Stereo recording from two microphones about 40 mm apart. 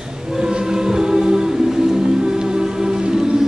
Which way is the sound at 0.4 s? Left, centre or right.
Centre.